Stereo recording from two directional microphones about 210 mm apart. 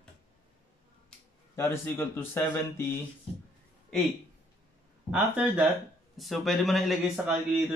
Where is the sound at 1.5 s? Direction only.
10° left (ahead or behind).